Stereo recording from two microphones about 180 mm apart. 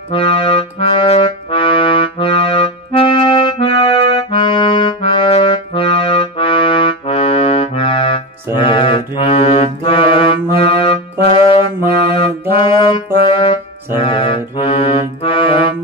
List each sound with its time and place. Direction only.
0.1 s accordion: 30° left (ahead or behind)
8.5 s music: 30° left (ahead or behind)
13.2 s brass instrument: 30° left (ahead or behind)
13.9 s music: 30° left (ahead or behind)